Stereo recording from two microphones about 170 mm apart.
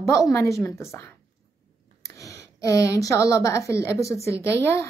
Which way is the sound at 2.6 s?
20° left (ahead or behind).